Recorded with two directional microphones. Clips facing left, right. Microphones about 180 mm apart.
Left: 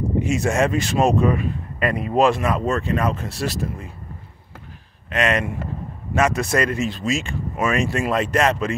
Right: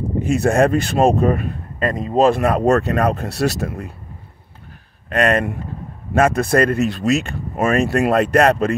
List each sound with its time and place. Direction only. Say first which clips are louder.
0.3 s speech: right 6 dB; 55° right (ahead or behind)
1.8 s speech: right 2 dB; 40° right (ahead or behind); by 3.9 s 70° right (ahead or behind)
5.1 s speech: right 4 dB; 50° right (ahead or behind)